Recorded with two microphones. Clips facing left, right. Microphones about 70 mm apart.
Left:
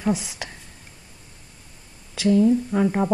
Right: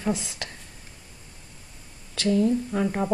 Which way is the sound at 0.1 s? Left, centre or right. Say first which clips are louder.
Left 3 dB; centre.